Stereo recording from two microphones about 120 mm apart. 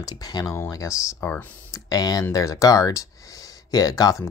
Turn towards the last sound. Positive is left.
turn(degrees=30)  # may be behind; listen again after turning